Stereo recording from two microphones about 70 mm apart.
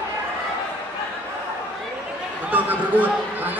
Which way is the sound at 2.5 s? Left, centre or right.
Right.